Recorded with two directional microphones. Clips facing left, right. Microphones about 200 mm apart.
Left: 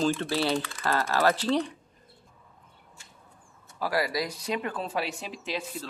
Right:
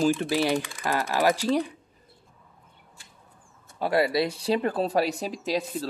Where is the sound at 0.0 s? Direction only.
15° right (ahead or behind).